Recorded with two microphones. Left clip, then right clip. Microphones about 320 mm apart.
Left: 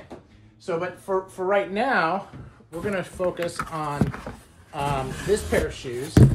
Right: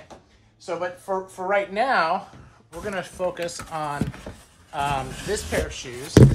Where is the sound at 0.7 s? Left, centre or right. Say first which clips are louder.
Even; right.